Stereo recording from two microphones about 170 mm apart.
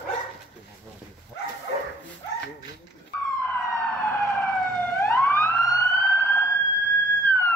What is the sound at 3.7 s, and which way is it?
Emergency vehicle, 5° left (ahead or behind).